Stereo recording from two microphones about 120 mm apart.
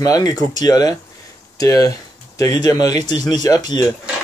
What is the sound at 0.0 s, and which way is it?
Speech, 30° left (ahead or behind).